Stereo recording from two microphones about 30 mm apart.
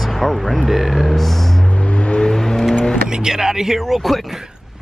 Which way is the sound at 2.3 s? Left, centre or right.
Centre.